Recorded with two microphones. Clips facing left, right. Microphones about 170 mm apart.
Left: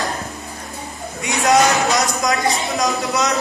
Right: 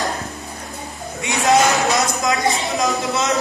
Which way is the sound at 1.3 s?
Centre (ahead or behind).